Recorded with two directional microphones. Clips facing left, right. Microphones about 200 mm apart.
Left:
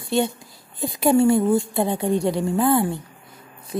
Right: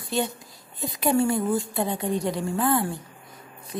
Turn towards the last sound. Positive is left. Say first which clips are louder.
# left 6 dB
turn(degrees=30)  # may be behind; listen again after turning